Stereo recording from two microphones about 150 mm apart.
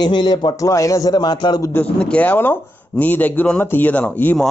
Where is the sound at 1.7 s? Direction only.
10° left (ahead or behind).